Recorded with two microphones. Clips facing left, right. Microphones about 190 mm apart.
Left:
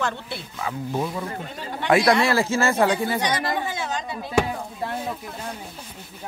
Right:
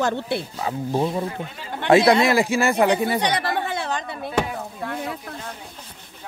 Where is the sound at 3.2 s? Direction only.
65° right (ahead or behind).